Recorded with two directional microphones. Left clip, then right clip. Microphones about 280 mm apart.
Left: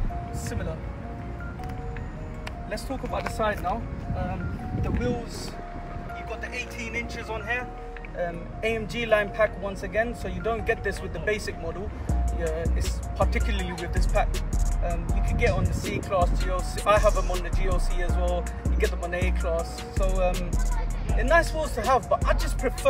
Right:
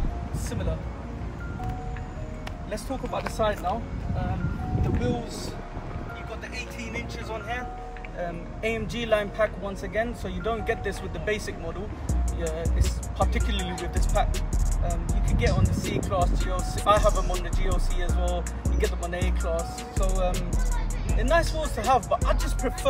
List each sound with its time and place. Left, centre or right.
2.7 s speech: centre
6.5 s speech: centre